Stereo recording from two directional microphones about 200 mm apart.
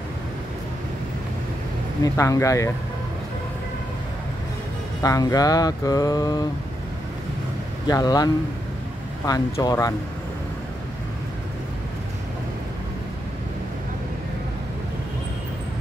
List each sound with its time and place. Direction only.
2.1 s music: 15° left (ahead or behind)
5.0 s music: 20° left (ahead or behind)
7.8 s speech: 20° left (ahead or behind)
9.2 s music: 20° left (ahead or behind)